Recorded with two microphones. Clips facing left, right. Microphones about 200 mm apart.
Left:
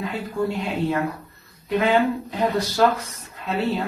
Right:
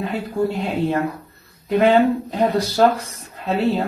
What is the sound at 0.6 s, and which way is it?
Speech, 40° right (ahead or behind).